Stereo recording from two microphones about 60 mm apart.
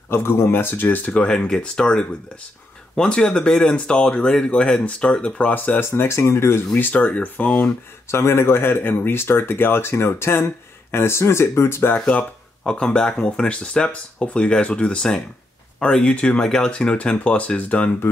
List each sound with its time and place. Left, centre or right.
0.1 s speech: left
1.5 s speech: centre
5.5 s speech: left
5.9 s speech: left
6.8 s speech: left
8.1 s speech: left
12.1 s speech: centre